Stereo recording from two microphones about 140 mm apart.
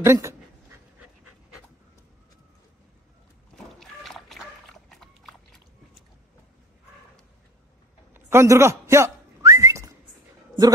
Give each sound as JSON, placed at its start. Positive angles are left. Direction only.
{"t": 0.0, "sound": "dog", "side_deg": -20}
{"t": 3.5, "sound": "a sound", "side_deg": 0}
{"t": 8.1, "sound": "whistling", "side_deg": -20}